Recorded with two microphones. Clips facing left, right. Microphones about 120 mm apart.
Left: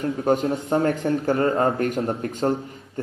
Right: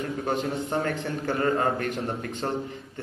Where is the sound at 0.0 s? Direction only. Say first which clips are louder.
Left 6 dB; 40° left (ahead or behind).